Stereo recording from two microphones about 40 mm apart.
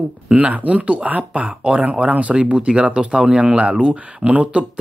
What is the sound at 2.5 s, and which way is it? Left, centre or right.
Speech, right.